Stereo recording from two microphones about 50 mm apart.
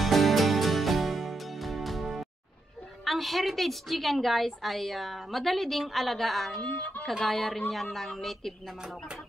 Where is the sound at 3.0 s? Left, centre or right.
Centre.